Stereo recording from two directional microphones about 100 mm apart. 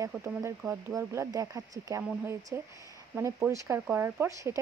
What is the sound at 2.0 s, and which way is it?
Speech, 25° right (ahead or behind).